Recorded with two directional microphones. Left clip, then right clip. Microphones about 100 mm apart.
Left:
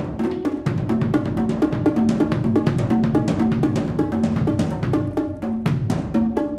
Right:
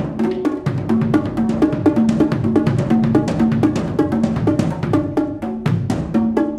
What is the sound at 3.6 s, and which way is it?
Drum, 30° right (ahead or behind).